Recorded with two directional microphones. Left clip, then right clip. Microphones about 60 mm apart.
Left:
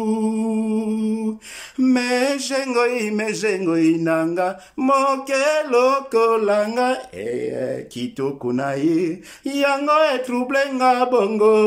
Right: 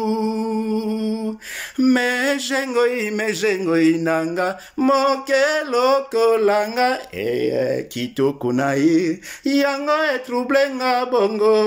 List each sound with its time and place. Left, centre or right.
0.0 s music: left
2.0 s speech: left
4.8 s speech: left
7.2 s speech: centre
8.5 s speech: centre
10.8 s mantra: left